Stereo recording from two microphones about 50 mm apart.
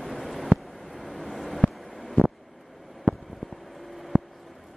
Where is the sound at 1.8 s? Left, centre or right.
Centre.